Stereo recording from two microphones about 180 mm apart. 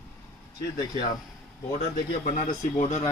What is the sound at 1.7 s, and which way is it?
Speech, 45° left (ahead or behind).